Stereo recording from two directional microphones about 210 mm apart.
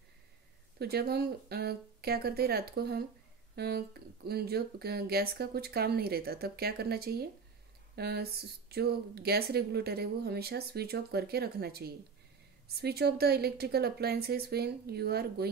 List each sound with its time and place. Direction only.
0.7 s speech: 50° right (ahead or behind)